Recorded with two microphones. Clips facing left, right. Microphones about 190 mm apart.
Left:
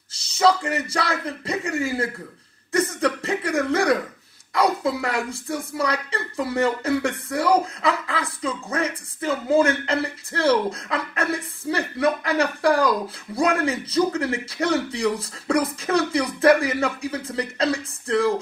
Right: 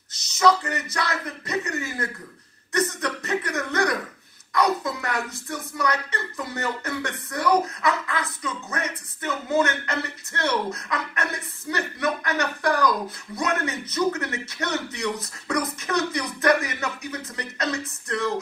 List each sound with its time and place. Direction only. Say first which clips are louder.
0.1 s a sound: left 1 dB; 30° left (ahead or behind)
2.7 s chuckle: left 4 dB; 30° left (ahead or behind)
4.6 s speech: left 2 dB; 30° left (ahead or behind)